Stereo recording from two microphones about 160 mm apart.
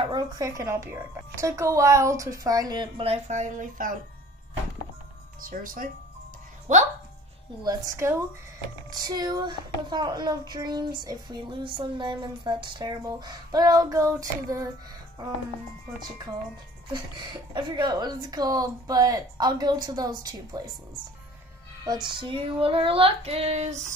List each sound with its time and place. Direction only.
0.0 s a woman's voice: 25° right (ahead or behind); by 4.0 s 55° right (ahead or behind)
5.4 s speech: 60° right (ahead or behind)
7.6 s a woman's voice: 20° right (ahead or behind)
16.9 s a woman's voice: 25° right (ahead or behind)
21.8 s female singing: 25° right (ahead or behind); by 23.9 s 45° right (ahead or behind)